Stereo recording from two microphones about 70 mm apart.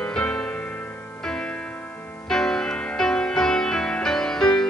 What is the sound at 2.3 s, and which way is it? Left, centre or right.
Music, centre.